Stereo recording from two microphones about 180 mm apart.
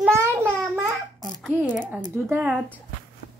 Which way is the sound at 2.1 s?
10° right (ahead or behind).